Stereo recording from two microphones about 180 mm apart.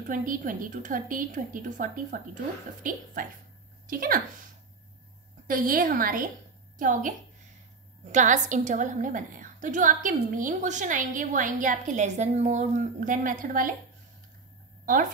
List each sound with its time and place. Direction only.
0.0 s a woman's voice: 50° right (ahead or behind)
5.5 s a woman's voice: 50° right (ahead or behind)